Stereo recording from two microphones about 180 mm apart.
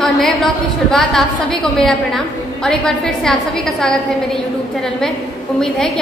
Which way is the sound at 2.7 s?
5° left (ahead or behind).